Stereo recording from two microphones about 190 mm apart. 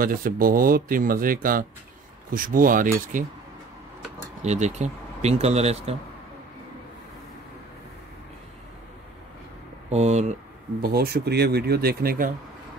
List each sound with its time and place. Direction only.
0.0 s speech: 50° right (ahead or behind)
4.4 s speech: 35° right (ahead or behind)
9.8 s speech: 35° right (ahead or behind)
10.8 s speech: 55° right (ahead or behind)